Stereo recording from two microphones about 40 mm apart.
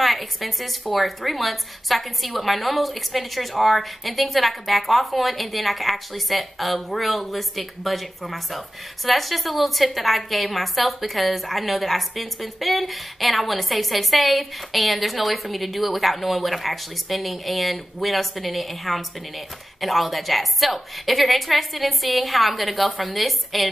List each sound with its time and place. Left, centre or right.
0.0 s a woman's voice: centre